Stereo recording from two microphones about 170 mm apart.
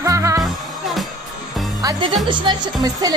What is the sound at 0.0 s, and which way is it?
Music, 20° right (ahead or behind).